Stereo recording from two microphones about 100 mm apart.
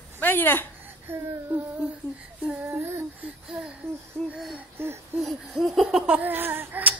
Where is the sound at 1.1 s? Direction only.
25° right (ahead or behind).